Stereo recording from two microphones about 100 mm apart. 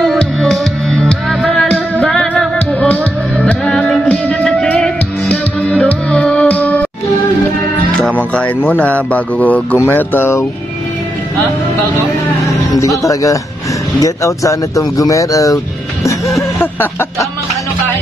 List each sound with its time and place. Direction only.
0.0 s music: 5° left (ahead or behind)
8.2 s speech: 15° left (ahead or behind)
12.7 s speech: 30° left (ahead or behind)
16.8 s speech: 20° left (ahead or behind)